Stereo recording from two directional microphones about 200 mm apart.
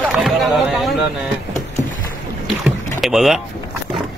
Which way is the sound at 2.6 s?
Centre (ahead or behind).